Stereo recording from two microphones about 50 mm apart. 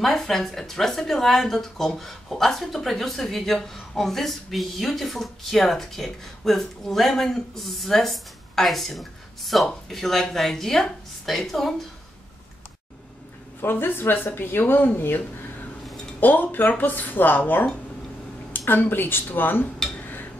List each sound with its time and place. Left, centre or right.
0.0 s speech: centre
13.6 s speech: left
18.7 s speech: left